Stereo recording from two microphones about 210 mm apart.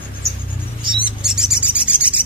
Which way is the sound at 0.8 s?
25° right (ahead or behind).